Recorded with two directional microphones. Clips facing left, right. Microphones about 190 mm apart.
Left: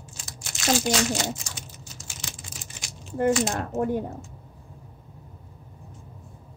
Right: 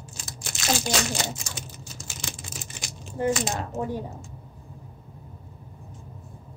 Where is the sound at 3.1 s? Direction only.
55° left (ahead or behind).